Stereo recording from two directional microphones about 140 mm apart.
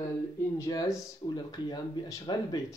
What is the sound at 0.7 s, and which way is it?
Speech, 25° left (ahead or behind).